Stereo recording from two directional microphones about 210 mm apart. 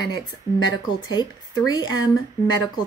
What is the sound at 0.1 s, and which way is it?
Speech, 20° left (ahead or behind).